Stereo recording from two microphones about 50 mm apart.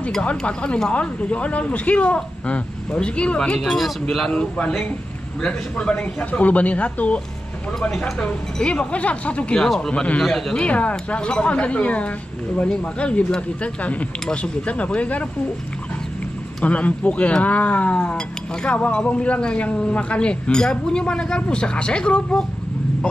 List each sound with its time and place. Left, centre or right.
0.4 s speech: left
3.6 s a man's voice: centre
4.3 s speech: left; by 10.6 s centre
10.6 s speech: left
16.6 s speech: left
17.9 s speech: centre